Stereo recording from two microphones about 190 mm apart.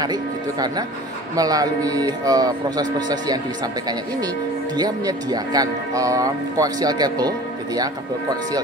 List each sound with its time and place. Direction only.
0.0 s speech: 20° right (ahead or behind)
4.7 s speech: 20° right (ahead or behind)